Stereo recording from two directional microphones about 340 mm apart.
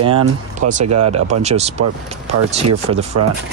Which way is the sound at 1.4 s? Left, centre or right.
Centre.